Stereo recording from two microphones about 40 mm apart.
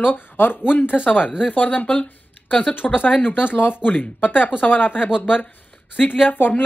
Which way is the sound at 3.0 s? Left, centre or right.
Left.